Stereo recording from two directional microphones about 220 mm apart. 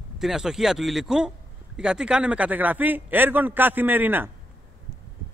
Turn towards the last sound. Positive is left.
turn(degrees=-10)  # may be behind; listen again after turning